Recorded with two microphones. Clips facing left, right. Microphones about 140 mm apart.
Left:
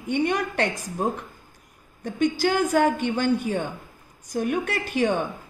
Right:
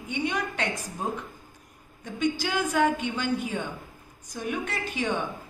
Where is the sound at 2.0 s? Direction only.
45° left (ahead or behind).